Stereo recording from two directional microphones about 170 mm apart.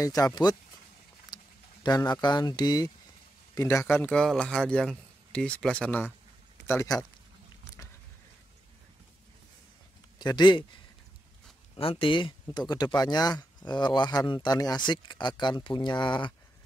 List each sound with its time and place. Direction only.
0.0 s speech: 20° left (ahead or behind)
1.3 s a sound: 25° left (ahead or behind)
2.1 s speech: 25° left (ahead or behind); by 6.0 s 10° left (ahead or behind)
6.7 s speech: 20° left (ahead or behind)
10.1 s speech: 25° left (ahead or behind)
11.7 s speech: 30° left (ahead or behind)